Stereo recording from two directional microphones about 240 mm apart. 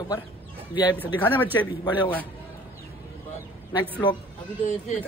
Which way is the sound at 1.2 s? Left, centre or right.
Centre.